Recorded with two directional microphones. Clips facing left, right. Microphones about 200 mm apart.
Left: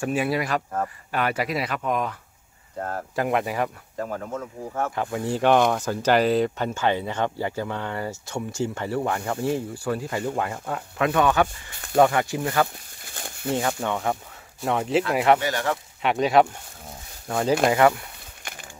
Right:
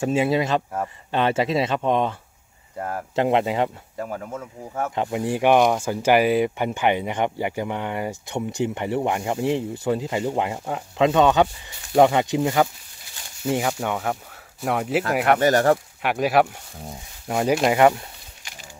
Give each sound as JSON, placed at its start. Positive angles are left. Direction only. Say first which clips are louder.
{"t": 0.0, "sound": "speech", "louder": "right 4 dB", "side_deg": -20}
{"t": 3.2, "sound": "speech", "louder": "right 4 dB", "side_deg": -25}
{"t": 4.0, "sound": "speech", "louder": "left 1 dB", "side_deg": -10}
{"t": 4.9, "sound": "speech", "louder": "right 2 dB", "side_deg": -20}
{"t": 13.0, "sound": "a sound", "louder": "left 1 dB", "side_deg": 50}
{"t": 13.7, "sound": "speech", "louder": "even", "side_deg": -5}
{"t": 15.4, "sound": "speech", "louder": "right 8 dB", "side_deg": -45}
{"t": 16.0, "sound": "speech", "louder": "left 1 dB", "side_deg": -5}
{"t": 17.3, "sound": "speech", "louder": "right 1 dB", "side_deg": -15}
{"t": 18.5, "sound": "a sound", "louder": "left 5 dB", "side_deg": 55}